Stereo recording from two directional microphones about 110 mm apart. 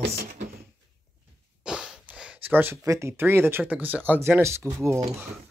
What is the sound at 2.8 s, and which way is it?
Speech, 25° right (ahead or behind).